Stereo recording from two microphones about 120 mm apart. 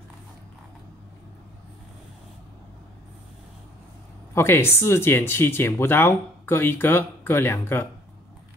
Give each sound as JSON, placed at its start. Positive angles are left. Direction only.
{"t": 4.3, "sound": "speech", "side_deg": 20}